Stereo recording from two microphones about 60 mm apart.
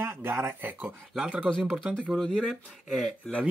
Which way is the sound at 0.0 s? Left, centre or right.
Right.